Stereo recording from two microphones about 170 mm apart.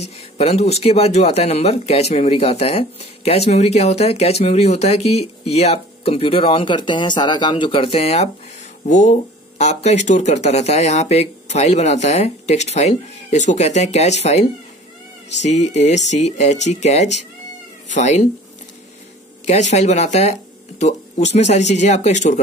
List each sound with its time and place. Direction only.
0.4 s speech: 35° left (ahead or behind)
19.4 s speech: 40° left (ahead or behind)